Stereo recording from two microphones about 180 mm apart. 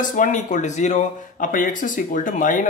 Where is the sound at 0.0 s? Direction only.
45° left (ahead or behind).